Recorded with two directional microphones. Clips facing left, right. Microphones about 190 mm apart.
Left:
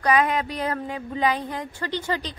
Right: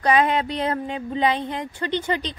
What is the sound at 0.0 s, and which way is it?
Speech, 25° right (ahead or behind).